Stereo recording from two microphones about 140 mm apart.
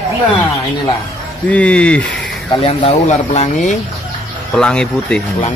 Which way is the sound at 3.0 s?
55° left (ahead or behind).